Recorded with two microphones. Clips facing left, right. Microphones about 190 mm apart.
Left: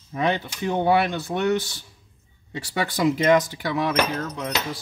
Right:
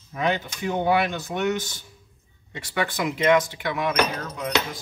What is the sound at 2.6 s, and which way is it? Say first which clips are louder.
Speech: left 4 dB; 35° left (ahead or behind).